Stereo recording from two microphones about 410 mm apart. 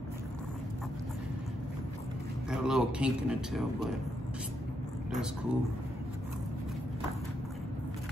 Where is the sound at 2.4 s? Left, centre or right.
Centre.